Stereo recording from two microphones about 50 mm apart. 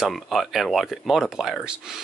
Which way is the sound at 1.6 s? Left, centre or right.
Centre.